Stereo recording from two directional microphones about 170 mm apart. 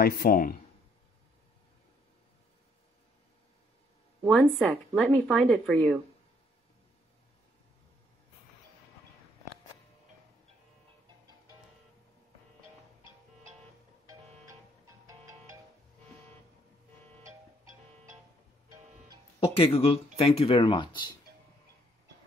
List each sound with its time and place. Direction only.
0.0 s speech: 65° left (ahead or behind)
4.3 s speech: 5° left (ahead or behind)
15.0 s music: 20° right (ahead or behind)
19.4 s speech: 35° left (ahead or behind)